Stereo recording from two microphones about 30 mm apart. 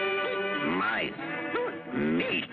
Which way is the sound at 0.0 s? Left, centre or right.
Centre.